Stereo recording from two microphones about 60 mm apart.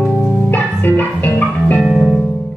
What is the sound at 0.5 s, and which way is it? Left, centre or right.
Music, left.